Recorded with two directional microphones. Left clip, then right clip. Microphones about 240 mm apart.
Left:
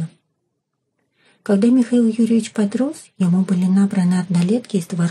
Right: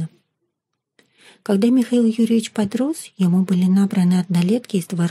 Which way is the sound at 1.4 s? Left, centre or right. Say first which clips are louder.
Left 2 dB; right.